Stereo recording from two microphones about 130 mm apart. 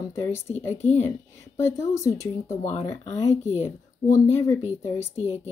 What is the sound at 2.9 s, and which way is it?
Speech, 60° left (ahead or behind).